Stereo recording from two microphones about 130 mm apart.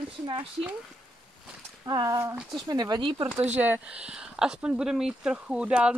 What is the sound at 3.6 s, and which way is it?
Speech, 10° right (ahead or behind).